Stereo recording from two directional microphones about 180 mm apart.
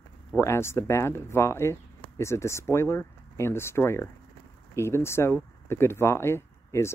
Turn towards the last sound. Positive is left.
turn(degrees=15)  # may be behind; listen again after turning